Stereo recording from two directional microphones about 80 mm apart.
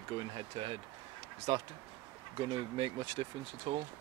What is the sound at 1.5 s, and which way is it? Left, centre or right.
Speech, right.